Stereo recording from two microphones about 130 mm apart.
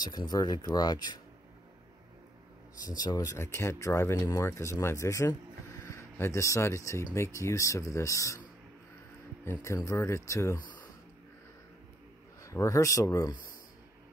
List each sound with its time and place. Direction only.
0.0 s speech: 30° left (ahead or behind)
2.9 s speech: 30° left (ahead or behind)
9.4 s speech: 20° left (ahead or behind)
12.4 s speech: 25° left (ahead or behind)